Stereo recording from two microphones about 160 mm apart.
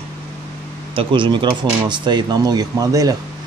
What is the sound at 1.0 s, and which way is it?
Speech, 30° right (ahead or behind).